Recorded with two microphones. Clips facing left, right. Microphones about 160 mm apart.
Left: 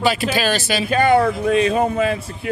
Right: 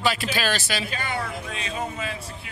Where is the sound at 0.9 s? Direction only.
60° left (ahead or behind).